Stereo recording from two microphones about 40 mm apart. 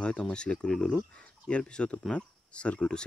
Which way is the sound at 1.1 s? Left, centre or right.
Left.